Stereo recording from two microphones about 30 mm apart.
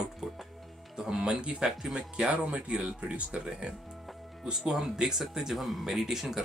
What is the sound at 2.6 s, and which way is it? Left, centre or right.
Speech, right.